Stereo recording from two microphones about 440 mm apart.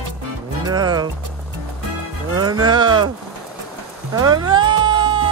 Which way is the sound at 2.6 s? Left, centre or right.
Centre.